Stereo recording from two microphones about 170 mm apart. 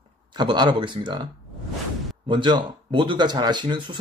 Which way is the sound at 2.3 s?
25° right (ahead or behind).